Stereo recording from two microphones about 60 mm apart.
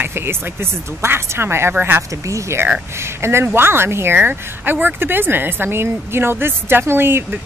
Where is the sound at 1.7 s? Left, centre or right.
Right.